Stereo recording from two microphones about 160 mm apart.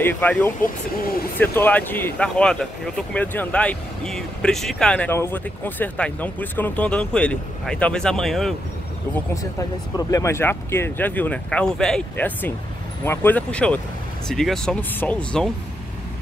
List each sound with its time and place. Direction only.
0.0 s speech: 10° left (ahead or behind)
9.1 s speech: 20° left (ahead or behind)